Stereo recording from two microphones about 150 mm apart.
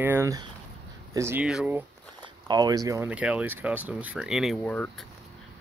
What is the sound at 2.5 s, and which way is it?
Speech, 25° right (ahead or behind).